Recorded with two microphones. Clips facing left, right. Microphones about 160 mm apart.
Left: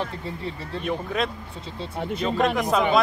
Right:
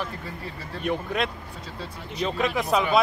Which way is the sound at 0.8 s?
Centre (ahead or behind).